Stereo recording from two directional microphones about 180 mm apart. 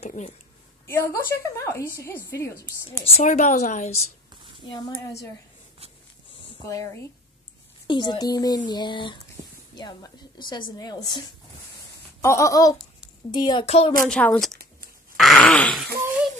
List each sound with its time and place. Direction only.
0.0 s a woman's voice: 40° left (ahead or behind)
0.8 s a woman's voice: 10° left (ahead or behind)
3.2 s a woman's voice: 40° left (ahead or behind)
4.6 s speech: 25° left (ahead or behind)
6.6 s a woman's voice: 20° left (ahead or behind)
10.8 s a woman's voice: 20° left (ahead or behind)
14.0 s a woman's voice: 5° left (ahead or behind)
15.1 s throat clearing: centre (ahead or behind)